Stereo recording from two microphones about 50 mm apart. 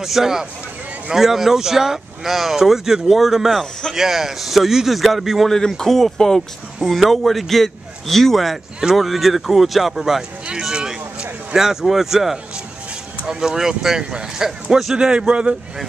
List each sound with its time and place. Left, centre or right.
0.0 s a man's voice: centre
5.5 s a man's voice: centre
10.4 s a sound: centre
11.5 s speech: centre